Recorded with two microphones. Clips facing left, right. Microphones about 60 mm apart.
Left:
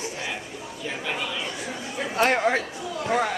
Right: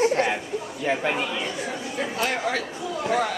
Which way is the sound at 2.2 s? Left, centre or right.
Left.